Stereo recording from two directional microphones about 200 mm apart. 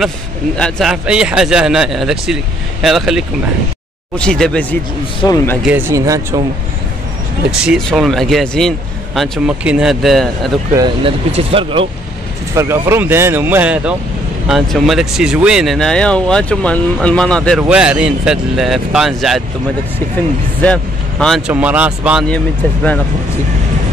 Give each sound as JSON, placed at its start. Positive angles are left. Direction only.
{"t": 0.6, "sound": "speech", "side_deg": 5}
{"t": 5.2, "sound": "speech", "side_deg": 15}
{"t": 5.6, "sound": "speech", "side_deg": -10}
{"t": 7.6, "sound": "speech", "side_deg": 0}
{"t": 11.1, "sound": "speech", "side_deg": -25}
{"t": 12.5, "sound": "speech", "side_deg": -15}
{"t": 20.6, "sound": "speech", "side_deg": 5}